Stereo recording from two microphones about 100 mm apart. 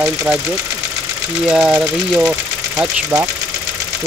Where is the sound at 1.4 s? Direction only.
5° right (ahead or behind).